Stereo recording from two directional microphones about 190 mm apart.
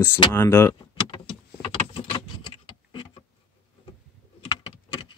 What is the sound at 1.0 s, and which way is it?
Vehicle, 25° left (ahead or behind).